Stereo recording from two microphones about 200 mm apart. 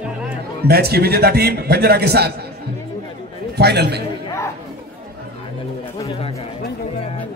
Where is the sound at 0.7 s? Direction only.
50° right (ahead or behind).